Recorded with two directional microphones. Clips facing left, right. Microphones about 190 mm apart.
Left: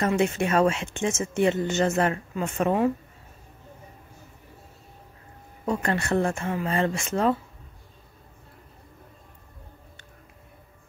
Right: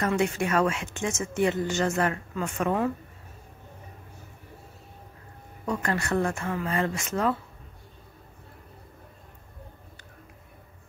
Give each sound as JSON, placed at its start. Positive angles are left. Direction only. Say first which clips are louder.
{"t": 0.0, "sound": "speech", "louder": "left 2 dB", "side_deg": 25}
{"t": 5.7, "sound": "speech", "louder": "left 2 dB", "side_deg": 25}